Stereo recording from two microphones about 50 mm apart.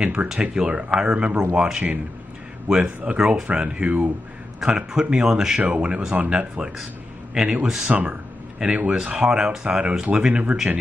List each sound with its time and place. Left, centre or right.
0.0 s speech: centre
4.6 s speech: centre
5.6 s speech: right; by 7.9 s centre
7.9 s speech: right